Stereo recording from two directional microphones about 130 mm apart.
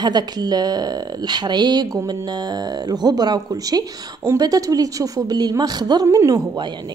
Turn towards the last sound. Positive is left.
turn(degrees=-30)  # may be behind; listen again after turning